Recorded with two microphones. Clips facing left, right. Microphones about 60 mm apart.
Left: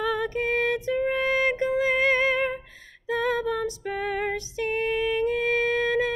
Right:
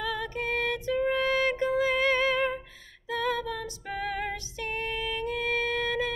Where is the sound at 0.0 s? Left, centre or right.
Left.